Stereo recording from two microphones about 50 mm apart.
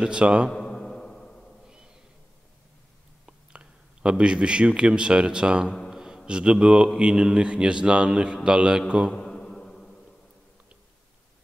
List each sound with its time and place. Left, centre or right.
0.0 s a man's voice: centre
0.5 s a sound: centre
3.3 s a man's voice: centre
9.1 s mantra: centre